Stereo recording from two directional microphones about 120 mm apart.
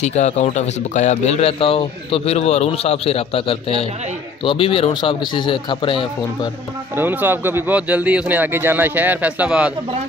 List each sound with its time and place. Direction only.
0.0 s speech: 70° left (ahead or behind); by 6.5 s 45° left (ahead or behind)
7.0 s speech: 15° right (ahead or behind)